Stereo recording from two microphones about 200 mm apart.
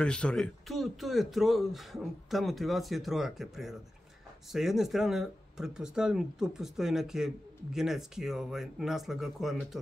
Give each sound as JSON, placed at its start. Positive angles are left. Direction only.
{"t": 0.0, "sound": "speech", "side_deg": 5}